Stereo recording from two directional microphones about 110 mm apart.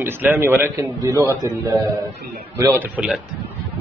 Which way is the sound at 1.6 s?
20° right (ahead or behind).